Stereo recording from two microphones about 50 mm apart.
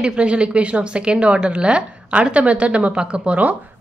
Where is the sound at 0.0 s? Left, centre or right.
Right.